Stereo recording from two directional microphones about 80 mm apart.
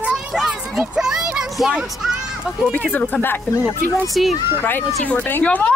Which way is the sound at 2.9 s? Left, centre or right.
Left.